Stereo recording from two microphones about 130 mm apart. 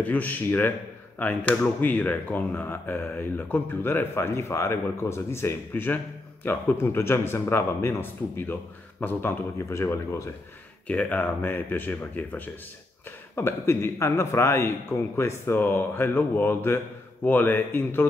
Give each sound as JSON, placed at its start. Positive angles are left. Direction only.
{"t": 0.0, "sound": "speech", "side_deg": 15}
{"t": 10.9, "sound": "speech", "side_deg": 10}